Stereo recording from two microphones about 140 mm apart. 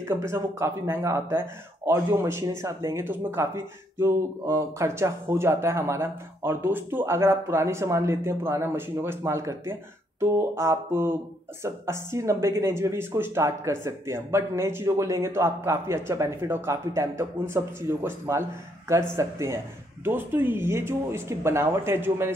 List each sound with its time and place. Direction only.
0.0 s speech: 20° right (ahead or behind)